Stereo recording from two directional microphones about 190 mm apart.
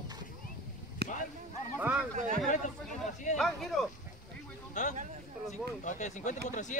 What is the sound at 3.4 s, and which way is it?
Speech, centre (ahead or behind).